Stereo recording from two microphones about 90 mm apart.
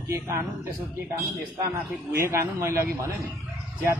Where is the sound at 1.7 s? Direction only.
25° right (ahead or behind).